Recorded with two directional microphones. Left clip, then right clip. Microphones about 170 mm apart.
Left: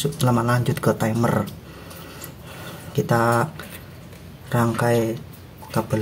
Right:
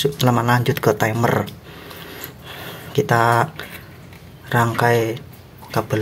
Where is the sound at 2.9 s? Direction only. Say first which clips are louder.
Right 4 dB; 15° right (ahead or behind).